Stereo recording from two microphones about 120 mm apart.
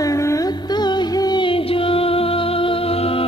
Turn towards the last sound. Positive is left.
turn(degrees=55)  # may be behind; listen again after turning